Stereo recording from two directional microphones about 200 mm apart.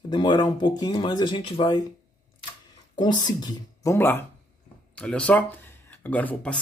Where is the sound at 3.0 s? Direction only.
20° left (ahead or behind).